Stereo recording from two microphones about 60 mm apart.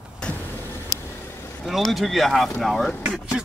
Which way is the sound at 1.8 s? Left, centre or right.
Centre.